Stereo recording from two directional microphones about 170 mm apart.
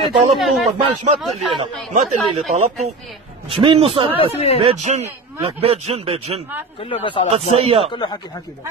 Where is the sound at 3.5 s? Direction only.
30° right (ahead or behind).